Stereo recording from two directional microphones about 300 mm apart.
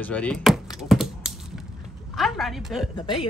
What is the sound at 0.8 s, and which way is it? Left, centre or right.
Typing, centre.